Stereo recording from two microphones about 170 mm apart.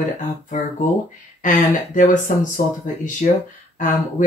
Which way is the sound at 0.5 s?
45° left (ahead or behind).